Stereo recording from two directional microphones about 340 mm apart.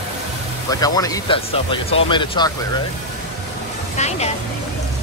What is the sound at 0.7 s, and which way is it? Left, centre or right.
Speech, centre.